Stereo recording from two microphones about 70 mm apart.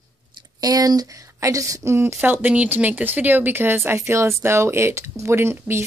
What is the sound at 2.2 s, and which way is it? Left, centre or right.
A woman's voice, right.